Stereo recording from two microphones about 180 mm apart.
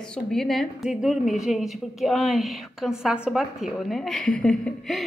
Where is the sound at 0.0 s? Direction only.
5° left (ahead or behind).